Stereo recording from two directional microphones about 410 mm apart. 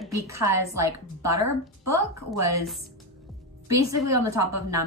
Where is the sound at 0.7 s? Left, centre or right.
Right.